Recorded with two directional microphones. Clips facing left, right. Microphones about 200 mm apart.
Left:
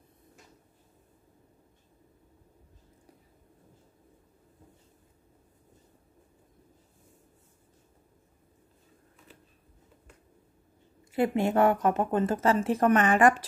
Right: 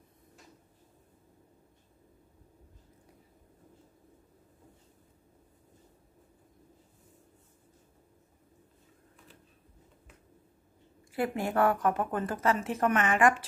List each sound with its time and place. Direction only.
11.1 s a woman's voice: 25° left (ahead or behind)